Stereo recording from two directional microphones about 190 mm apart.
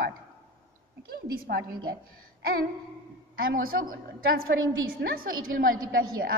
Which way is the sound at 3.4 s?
50° right (ahead or behind).